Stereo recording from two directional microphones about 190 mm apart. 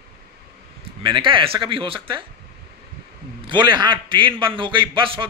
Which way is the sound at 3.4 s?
25° right (ahead or behind).